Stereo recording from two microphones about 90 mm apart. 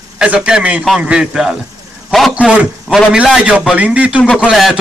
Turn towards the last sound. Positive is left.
turn(degrees=-5)  # may be behind; listen again after turning